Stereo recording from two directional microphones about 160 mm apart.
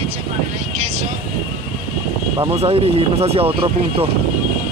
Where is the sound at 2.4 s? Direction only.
35° right (ahead or behind).